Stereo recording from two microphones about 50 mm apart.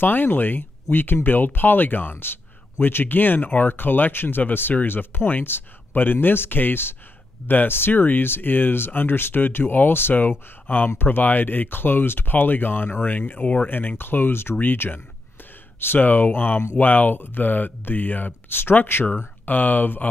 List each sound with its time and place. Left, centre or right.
0.0 s speech: left
13.7 s speech: left